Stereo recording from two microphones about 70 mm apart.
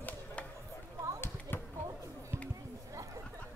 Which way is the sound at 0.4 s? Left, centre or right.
Centre.